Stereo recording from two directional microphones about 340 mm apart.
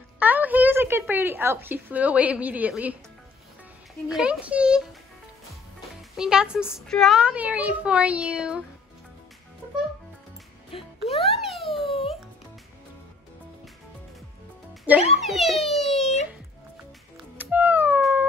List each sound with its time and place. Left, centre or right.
0.2 s a woman's voice: centre
4.1 s a woman's voice: centre
6.1 s a woman's voice: centre
10.7 s music: centre
11.3 s a sound: centre
14.9 s a woman's voice: centre
17.4 s music: centre